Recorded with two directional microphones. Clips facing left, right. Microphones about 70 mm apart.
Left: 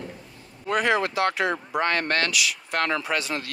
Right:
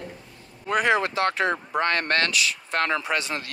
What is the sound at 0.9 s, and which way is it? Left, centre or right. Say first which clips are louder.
Speech: even; right.